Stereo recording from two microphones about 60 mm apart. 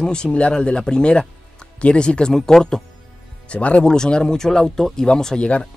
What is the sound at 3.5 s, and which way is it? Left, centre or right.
Speech, left.